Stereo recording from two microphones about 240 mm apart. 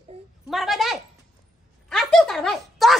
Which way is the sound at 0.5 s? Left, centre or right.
Centre.